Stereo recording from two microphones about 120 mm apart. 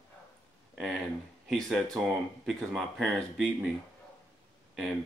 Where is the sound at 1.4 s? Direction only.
Centre (ahead or behind).